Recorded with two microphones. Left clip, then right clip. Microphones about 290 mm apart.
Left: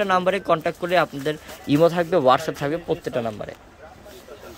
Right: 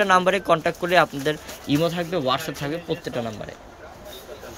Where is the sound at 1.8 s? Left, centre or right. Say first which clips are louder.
Left 8 dB; centre.